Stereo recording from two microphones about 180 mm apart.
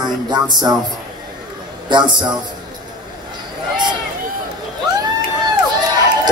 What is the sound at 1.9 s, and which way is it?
Speech, 25° right (ahead or behind).